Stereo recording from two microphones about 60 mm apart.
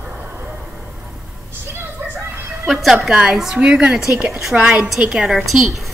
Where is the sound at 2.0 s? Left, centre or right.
Right.